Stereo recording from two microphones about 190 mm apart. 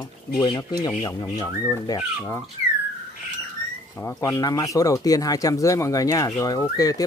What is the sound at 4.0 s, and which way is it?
Speech, 15° left (ahead or behind).